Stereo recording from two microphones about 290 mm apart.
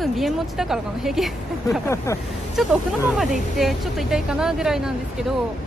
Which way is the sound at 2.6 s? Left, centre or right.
Centre.